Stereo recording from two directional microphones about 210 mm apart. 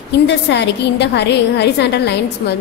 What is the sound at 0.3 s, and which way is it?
A woman's voice, 55° left (ahead or behind).